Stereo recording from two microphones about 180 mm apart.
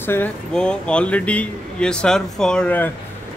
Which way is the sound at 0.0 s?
10° left (ahead or behind).